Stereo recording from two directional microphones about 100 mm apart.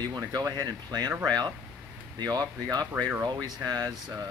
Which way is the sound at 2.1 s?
40° right (ahead or behind).